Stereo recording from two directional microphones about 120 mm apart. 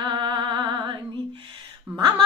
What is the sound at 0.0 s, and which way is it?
Music, 40° right (ahead or behind).